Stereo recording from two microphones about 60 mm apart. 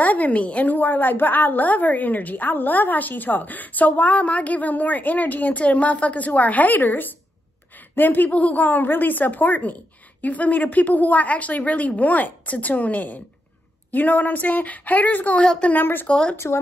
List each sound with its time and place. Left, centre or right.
0.0 s a woman's voice: left
16.1 s speech: centre